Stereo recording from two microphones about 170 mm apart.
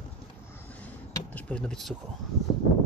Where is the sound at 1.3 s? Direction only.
10° left (ahead or behind).